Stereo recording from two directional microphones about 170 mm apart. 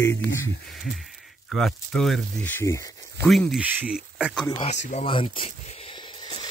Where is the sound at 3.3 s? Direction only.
Centre (ahead or behind).